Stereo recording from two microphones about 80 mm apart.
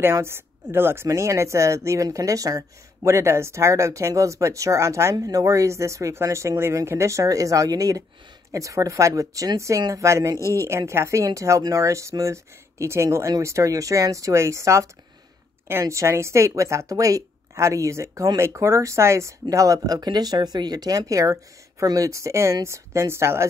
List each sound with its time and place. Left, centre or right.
0.0 s a woman's voice: right
20.0 s speech: right